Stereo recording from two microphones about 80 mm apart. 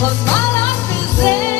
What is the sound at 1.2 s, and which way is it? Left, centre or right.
Music, left.